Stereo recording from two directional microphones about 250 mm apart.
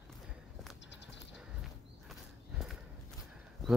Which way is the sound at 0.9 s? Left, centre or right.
Left.